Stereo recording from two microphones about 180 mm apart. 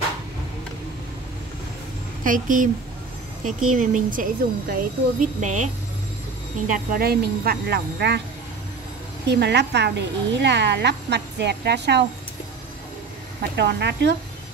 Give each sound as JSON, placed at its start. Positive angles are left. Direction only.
{"t": 2.2, "sound": "a woman's voice", "side_deg": -50}
{"t": 6.7, "sound": "speech", "side_deg": -50}
{"t": 9.2, "sound": "speech", "side_deg": -70}
{"t": 13.6, "sound": "speech", "side_deg": -70}